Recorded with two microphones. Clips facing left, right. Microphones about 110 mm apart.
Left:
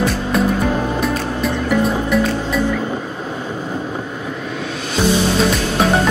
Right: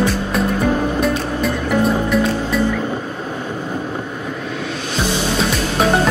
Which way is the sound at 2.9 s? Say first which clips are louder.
Even; 5° left (ahead or behind).